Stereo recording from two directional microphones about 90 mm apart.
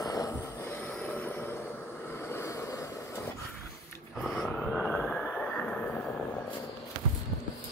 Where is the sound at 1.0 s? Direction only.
20° left (ahead or behind).